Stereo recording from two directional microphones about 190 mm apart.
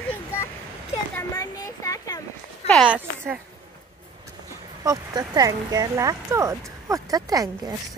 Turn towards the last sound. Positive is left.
turn(degrees=-20)  # may be behind; listen again after turning